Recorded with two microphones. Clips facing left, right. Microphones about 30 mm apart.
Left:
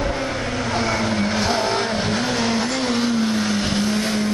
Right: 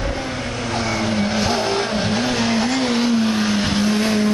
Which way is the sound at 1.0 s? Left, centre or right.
Centre.